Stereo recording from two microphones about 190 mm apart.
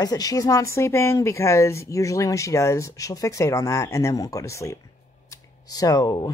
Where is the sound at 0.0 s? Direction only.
20° left (ahead or behind).